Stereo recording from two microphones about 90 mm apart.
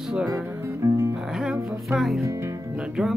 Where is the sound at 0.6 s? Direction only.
30° right (ahead or behind).